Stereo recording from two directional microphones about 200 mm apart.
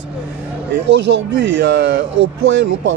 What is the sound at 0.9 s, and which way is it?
Speech, 60° right (ahead or behind).